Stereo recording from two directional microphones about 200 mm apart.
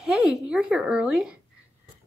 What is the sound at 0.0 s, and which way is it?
A woman's voice, centre (ahead or behind).